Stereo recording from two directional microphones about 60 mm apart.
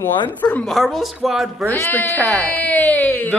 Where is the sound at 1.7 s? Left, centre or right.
Left.